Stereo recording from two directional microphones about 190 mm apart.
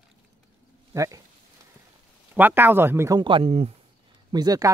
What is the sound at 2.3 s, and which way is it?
Speech, 10° right (ahead or behind).